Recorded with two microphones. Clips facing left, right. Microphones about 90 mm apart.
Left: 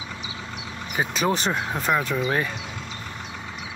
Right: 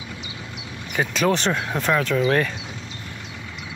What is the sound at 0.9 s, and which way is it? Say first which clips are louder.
Speech: right 3 dB; 5° left (ahead or behind).